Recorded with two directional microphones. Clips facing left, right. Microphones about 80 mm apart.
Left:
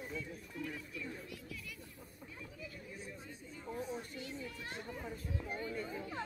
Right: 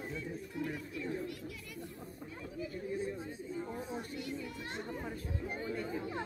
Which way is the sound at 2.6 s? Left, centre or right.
Right.